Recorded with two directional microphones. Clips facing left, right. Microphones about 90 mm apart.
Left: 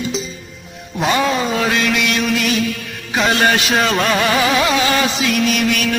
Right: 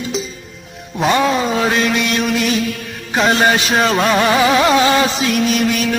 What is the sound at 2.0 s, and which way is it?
Music, centre (ahead or behind).